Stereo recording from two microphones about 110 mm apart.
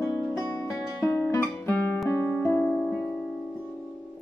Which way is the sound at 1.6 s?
20° left (ahead or behind).